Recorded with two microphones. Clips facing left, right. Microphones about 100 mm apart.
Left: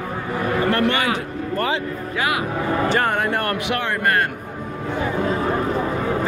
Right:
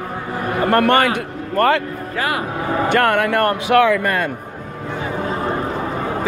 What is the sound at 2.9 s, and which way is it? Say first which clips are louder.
Speech: right 4 dB; 65° right (ahead or behind).